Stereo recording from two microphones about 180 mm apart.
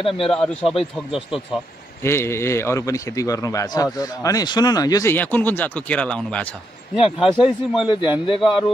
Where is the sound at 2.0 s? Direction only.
15° left (ahead or behind).